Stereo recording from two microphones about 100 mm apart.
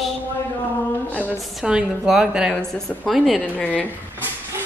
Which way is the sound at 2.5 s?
5° left (ahead or behind).